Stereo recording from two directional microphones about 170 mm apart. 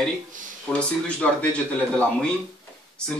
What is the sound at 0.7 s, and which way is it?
Speech, 10° left (ahead or behind).